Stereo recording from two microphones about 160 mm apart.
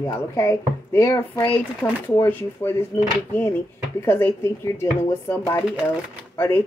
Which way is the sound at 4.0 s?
15° left (ahead or behind).